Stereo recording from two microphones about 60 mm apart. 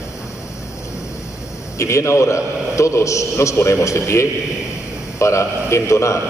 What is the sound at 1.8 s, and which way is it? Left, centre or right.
A man's voice, left.